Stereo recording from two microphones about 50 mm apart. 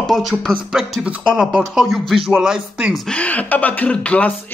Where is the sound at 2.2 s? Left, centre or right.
Centre.